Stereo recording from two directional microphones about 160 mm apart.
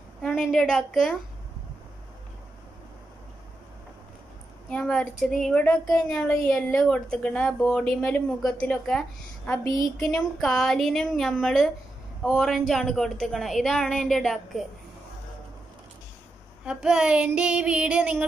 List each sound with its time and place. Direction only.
0.2 s a woman's voice: 5° left (ahead or behind)
4.6 s speech: 5° left (ahead or behind)
9.9 s a sound: 20° left (ahead or behind)
10.4 s speech: centre (ahead or behind)
16.6 s female singing: 5° right (ahead or behind)